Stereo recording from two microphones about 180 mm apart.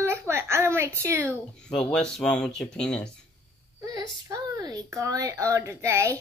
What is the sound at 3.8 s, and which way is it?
A child's voice, 20° right (ahead or behind).